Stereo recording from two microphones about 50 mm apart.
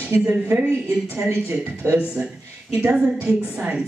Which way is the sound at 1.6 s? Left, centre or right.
Right.